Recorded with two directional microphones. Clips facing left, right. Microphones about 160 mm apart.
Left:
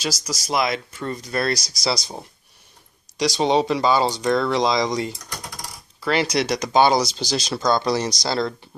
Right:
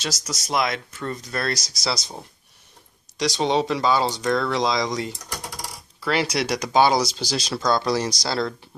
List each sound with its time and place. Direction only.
0.3 s speech: 5° left (ahead or behind)
3.2 s speech: 5° left (ahead or behind)